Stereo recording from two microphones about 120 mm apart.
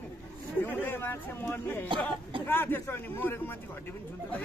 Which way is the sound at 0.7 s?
15° left (ahead or behind).